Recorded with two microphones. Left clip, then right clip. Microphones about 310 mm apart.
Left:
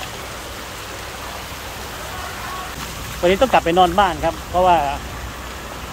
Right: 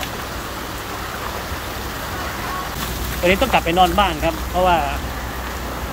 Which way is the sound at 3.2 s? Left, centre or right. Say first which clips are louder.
Left 2 dB; left.